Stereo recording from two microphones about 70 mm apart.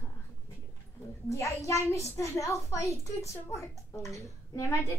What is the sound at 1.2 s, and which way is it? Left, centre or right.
A child's voice, left.